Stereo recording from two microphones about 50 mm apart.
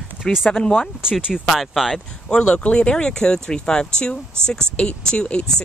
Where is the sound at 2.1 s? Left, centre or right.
Centre.